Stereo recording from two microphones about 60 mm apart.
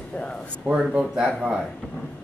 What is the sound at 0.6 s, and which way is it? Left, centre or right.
Speech, centre.